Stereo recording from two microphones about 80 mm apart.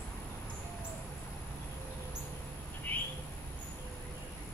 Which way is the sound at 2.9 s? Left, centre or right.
Left.